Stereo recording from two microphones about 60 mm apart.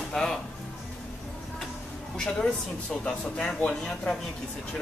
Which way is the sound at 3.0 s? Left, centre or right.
Centre.